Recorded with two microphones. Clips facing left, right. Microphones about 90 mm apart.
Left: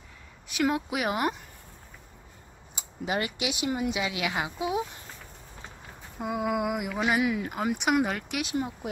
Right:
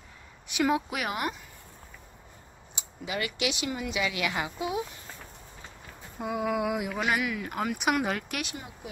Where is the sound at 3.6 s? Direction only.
25° left (ahead or behind).